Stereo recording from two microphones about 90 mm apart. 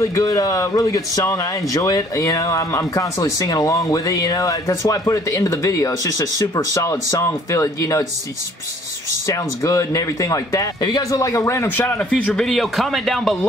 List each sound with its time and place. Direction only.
0.0 s speech: 35° left (ahead or behind)
9.3 s speech: 40° left (ahead or behind); by 12.1 s 25° left (ahead or behind)
12.1 s speech: 10° left (ahead or behind)